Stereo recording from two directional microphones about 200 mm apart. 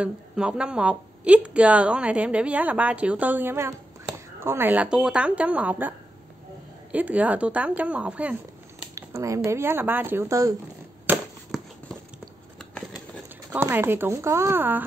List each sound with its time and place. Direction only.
0.0 s a woman's voice: 5° right (ahead or behind)
11.5 s a sound: centre (ahead or behind)
13.5 s a woman's voice: 10° right (ahead or behind)